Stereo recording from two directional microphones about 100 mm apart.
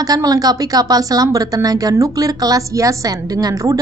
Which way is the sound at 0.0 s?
40° right (ahead or behind).